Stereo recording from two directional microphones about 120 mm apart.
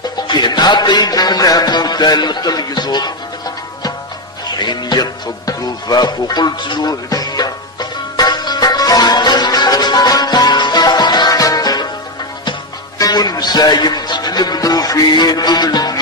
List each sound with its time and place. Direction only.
0.3 s music: 40° left (ahead or behind)
4.6 s music: 35° left (ahead or behind)
13.0 s speech: 30° left (ahead or behind)